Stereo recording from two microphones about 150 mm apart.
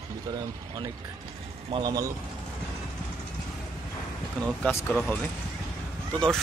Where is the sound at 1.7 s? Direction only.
30° right (ahead or behind).